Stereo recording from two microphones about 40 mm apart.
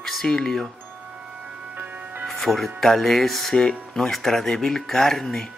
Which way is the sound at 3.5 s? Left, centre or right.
Centre.